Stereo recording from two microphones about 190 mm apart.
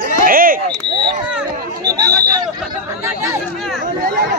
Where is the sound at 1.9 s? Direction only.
20° right (ahead or behind).